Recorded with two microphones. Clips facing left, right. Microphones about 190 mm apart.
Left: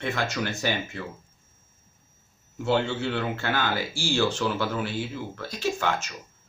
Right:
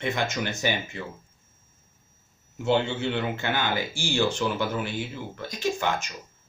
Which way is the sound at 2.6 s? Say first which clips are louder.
Right 1 dB; 20° right (ahead or behind).